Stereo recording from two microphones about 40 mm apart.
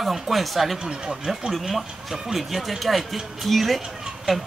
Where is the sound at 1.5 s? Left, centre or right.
Centre.